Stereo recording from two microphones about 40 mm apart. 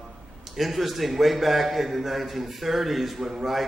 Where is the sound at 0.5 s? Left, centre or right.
Centre.